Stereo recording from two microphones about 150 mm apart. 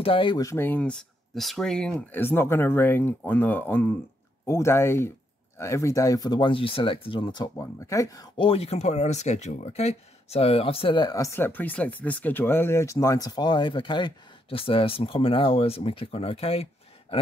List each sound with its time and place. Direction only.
0.0 s speech: 35° left (ahead or behind)
0.5 s speech: 15° left (ahead or behind); by 7.4 s 30° left (ahead or behind)
7.5 s speech: 20° left (ahead or behind)
8.4 s speech: 40° left (ahead or behind)